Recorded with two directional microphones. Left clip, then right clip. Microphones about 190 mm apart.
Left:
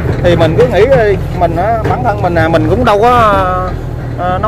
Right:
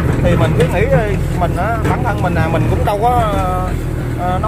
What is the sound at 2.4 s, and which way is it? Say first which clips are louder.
Speech: left 8 dB; 60° left (ahead or behind).